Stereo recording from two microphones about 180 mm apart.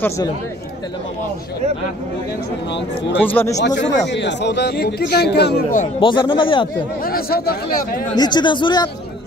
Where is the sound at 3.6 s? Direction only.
80° left.